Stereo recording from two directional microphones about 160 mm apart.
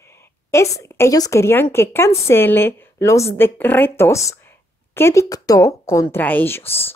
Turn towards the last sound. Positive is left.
turn(degrees=15)  # may be behind; listen again after turning